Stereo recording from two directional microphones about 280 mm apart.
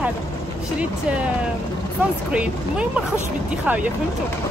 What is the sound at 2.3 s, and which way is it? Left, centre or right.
Speech, centre.